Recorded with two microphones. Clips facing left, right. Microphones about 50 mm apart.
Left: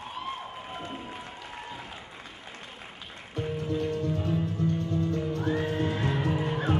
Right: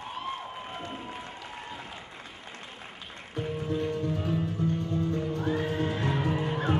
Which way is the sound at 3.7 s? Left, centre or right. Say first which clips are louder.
Left 1 dB; centre.